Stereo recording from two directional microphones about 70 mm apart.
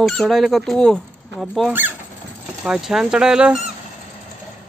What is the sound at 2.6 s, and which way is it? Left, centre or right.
Speech, centre.